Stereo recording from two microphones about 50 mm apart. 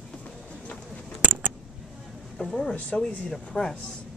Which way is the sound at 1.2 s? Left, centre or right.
Right.